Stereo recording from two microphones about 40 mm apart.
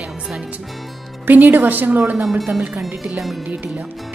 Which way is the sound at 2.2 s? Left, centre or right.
Centre.